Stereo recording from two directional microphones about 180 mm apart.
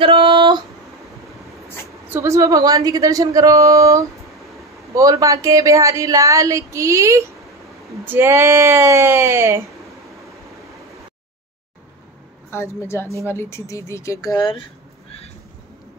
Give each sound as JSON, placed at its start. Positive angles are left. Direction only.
{"t": 0.0, "sound": "a sound", "side_deg": -30}
{"t": 2.0, "sound": "speech", "side_deg": -15}
{"t": 12.4, "sound": "a woman's voice", "side_deg": 15}